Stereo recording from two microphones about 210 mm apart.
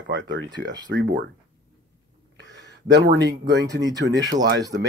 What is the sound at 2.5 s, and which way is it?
Speech, 55° right (ahead or behind).